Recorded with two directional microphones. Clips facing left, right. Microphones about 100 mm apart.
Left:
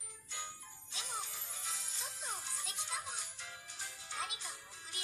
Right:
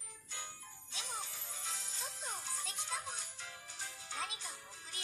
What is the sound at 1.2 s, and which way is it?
Music, 40° right (ahead or behind).